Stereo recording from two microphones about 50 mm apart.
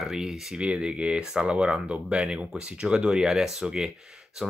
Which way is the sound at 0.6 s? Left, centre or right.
Right.